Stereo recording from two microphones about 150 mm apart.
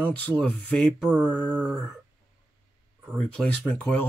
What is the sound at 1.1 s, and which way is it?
Mantra, 10° right (ahead or behind).